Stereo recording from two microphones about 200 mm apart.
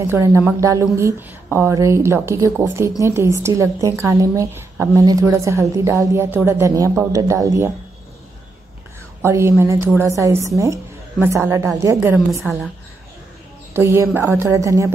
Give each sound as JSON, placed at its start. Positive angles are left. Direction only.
{"t": 0.0, "sound": "a woman's voice", "side_deg": -15}
{"t": 9.2, "sound": "a woman's voice", "side_deg": -15}
{"t": 12.3, "sound": "a woman's voice", "side_deg": 0}
{"t": 13.7, "sound": "a woman's voice", "side_deg": -15}